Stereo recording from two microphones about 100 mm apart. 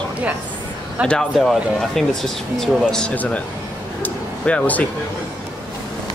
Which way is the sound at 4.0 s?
15° left (ahead or behind).